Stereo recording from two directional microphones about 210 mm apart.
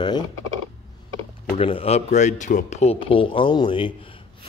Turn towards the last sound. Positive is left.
turn(degrees=20)  # may be behind; listen again after turning